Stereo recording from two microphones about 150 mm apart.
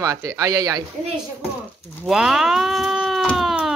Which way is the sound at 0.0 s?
20° right (ahead or behind).